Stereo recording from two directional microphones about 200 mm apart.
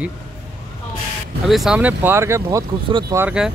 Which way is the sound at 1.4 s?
Centre (ahead or behind).